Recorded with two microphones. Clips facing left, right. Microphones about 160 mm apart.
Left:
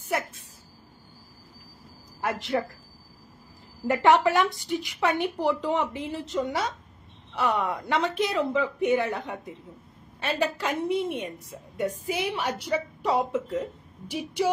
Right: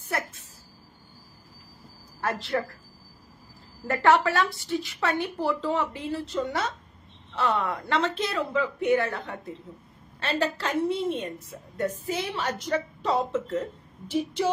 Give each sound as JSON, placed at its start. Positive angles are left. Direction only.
{"t": 0.1, "sound": "a sound", "side_deg": 15}
{"t": 2.2, "sound": "a woman's voice", "side_deg": 15}
{"t": 3.8, "sound": "a woman's voice", "side_deg": 20}